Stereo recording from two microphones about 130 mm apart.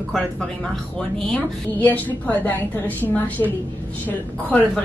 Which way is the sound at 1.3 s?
10° left (ahead or behind).